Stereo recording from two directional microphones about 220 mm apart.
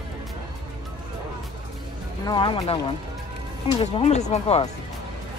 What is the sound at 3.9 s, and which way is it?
Speech, 30° left (ahead or behind).